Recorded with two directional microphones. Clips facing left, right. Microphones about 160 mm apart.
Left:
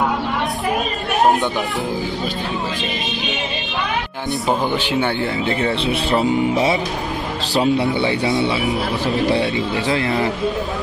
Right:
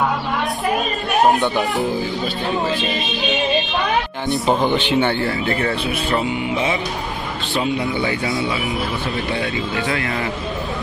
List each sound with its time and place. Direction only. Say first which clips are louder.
4.3 s speech: right 2 dB; 5° left (ahead or behind)
5.4 s speech: left 1 dB; 20° left (ahead or behind)